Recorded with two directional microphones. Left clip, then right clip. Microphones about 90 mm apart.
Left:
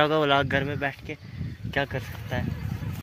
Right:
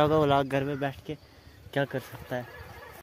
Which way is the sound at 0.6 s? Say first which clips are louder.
Left 2 dB; 55° right (ahead or behind).